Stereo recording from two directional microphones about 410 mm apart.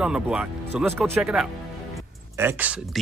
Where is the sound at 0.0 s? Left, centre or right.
Centre.